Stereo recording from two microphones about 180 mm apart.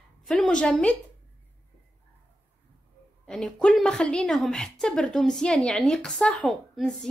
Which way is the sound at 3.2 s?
5° left (ahead or behind).